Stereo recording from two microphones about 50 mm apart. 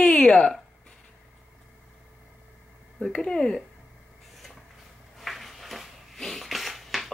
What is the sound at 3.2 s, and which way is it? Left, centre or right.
Speech, centre.